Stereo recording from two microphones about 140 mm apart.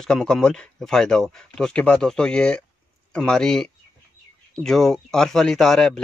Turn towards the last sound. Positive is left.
turn(degrees=5)  # may be behind; listen again after turning